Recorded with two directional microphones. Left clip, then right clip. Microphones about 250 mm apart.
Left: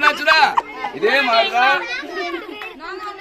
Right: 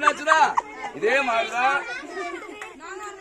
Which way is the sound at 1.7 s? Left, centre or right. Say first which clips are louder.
Left 6 dB; left.